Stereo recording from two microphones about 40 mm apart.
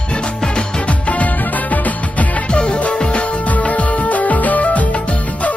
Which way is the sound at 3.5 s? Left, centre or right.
Left.